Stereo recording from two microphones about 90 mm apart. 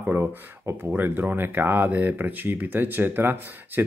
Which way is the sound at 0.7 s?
20° right (ahead or behind).